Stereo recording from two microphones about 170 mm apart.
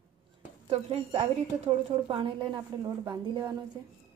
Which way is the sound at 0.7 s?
35° right (ahead or behind).